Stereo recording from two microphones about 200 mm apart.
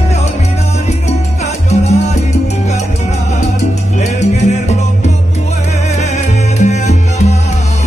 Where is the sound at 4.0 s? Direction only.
35° left (ahead or behind).